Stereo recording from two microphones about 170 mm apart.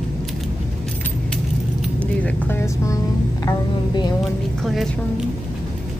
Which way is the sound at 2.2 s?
15° left (ahead or behind).